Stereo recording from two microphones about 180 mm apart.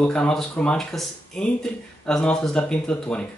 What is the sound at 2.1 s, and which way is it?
Speech, 5° left (ahead or behind).